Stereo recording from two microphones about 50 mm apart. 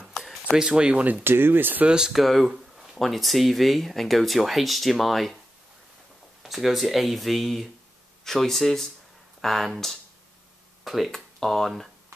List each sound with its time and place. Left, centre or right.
0.5 s speech: centre
1.2 s speech: right
1.9 s speech: centre
2.1 s speech: centre
6.4 s speech: centre
10.8 s a sound: centre
11.1 s speech: centre